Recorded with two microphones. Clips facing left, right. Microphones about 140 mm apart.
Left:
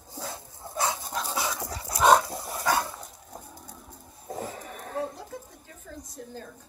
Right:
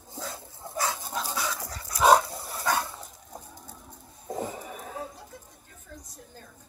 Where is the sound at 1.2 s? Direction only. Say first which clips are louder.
Right 2 dB; centre (ahead or behind).